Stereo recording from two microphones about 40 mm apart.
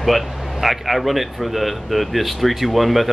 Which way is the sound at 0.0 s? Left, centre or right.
Centre.